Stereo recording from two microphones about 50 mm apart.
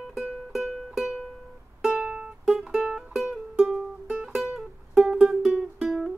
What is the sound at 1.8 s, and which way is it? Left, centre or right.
Music, right.